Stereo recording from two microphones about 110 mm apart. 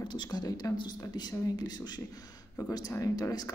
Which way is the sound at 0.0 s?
40° left (ahead or behind).